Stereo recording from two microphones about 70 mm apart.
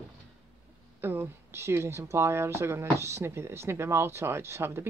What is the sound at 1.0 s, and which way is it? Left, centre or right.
Speech, right.